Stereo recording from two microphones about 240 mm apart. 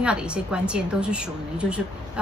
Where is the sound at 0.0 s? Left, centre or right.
Centre.